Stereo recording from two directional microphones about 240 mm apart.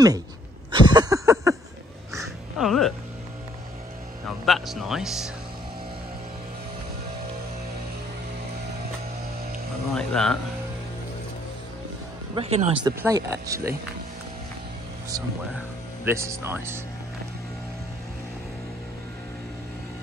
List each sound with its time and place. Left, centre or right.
0.7 s a sound: centre
2.2 s a sound: centre
4.5 s speech: centre
9.9 s speech: centre
12.4 s speech: right
13.0 s speech: centre
15.0 s speech: centre